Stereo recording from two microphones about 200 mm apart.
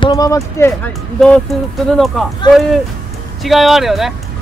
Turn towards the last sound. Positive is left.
turn(degrees=0)  # may be behind; listen again after turning